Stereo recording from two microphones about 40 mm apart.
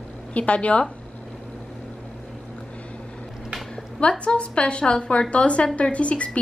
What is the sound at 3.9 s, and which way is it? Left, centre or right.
A woman's voice, left.